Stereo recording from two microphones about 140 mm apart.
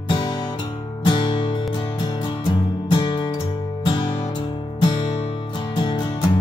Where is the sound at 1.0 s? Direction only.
35° left (ahead or behind).